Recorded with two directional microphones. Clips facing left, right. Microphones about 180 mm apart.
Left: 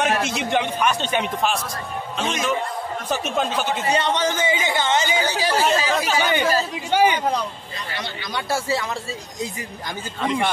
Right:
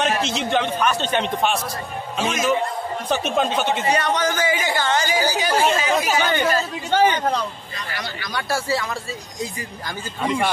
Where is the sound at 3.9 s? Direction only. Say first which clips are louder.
Left 2 dB; 25° left (ahead or behind).